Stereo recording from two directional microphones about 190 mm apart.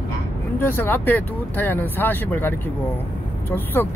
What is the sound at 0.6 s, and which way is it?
Speech, 10° left (ahead or behind).